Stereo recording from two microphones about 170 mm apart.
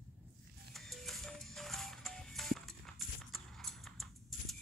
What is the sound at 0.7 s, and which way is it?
Music, centre (ahead or behind).